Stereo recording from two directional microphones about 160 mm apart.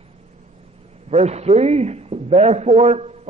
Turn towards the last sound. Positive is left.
turn(degrees=-40)  # may be behind; listen again after turning